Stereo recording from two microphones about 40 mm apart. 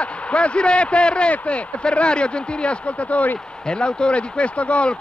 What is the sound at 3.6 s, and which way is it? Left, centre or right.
Speech, left.